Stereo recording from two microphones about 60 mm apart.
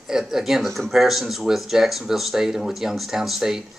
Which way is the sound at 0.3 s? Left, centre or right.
Centre.